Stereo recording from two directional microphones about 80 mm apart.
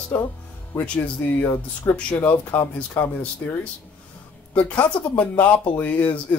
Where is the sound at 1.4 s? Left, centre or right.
Left.